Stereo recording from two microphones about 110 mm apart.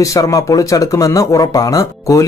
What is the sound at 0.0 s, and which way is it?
Speech, 30° left (ahead or behind).